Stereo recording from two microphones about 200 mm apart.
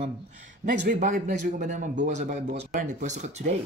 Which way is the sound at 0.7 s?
40° right (ahead or behind).